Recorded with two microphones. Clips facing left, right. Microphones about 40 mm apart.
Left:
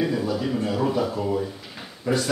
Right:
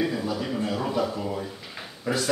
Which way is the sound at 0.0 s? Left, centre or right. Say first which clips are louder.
Left 3 dB; centre.